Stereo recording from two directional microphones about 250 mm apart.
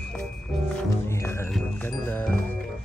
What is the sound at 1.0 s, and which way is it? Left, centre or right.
Music, centre.